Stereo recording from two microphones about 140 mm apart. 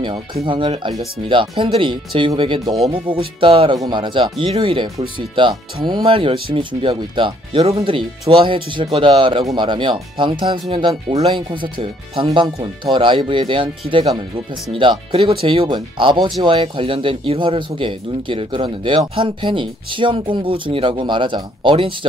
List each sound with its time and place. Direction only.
0.0 s speech: 35° right (ahead or behind)